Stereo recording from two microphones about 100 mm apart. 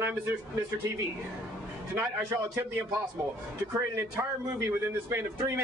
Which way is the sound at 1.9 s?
20° right (ahead or behind).